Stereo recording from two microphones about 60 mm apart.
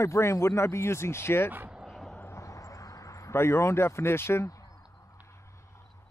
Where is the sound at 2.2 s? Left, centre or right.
Left.